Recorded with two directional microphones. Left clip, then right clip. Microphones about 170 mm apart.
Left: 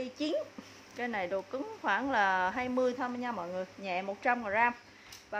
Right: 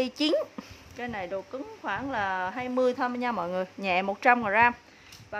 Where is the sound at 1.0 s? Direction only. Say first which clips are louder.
Even; 5° right (ahead or behind).